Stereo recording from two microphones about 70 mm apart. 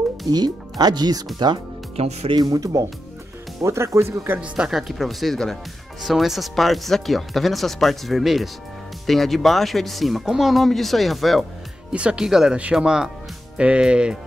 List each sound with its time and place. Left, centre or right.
0.3 s speech: right
2.3 s speech: right
3.6 s speech: right
4.6 s speech: centre
11.9 s speech: centre